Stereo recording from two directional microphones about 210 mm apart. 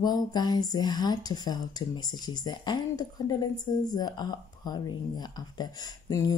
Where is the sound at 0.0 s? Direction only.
20° left (ahead or behind).